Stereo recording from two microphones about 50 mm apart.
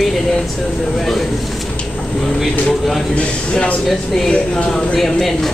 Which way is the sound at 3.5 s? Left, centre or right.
Left.